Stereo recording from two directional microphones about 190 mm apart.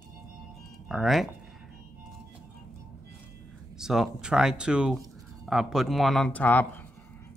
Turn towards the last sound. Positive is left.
turn(degrees=10)  # may be behind; listen again after turning